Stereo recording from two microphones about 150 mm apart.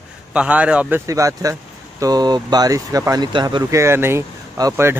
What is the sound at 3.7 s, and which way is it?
Speech, 15° right (ahead or behind).